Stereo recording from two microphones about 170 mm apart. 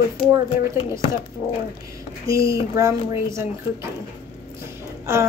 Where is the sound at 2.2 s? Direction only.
20° right (ahead or behind).